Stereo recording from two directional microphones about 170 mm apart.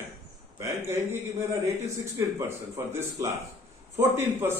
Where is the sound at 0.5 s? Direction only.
15° right (ahead or behind).